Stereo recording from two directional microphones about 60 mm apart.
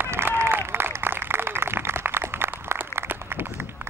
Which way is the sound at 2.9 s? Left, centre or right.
Right.